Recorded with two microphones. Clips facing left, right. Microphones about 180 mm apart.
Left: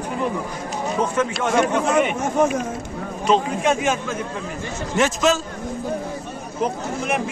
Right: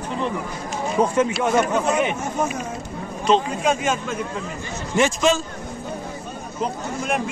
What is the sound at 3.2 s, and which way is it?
Speech, 5° left (ahead or behind).